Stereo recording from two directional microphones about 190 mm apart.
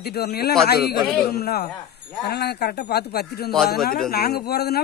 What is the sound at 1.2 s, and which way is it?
Speech, 55° left (ahead or behind).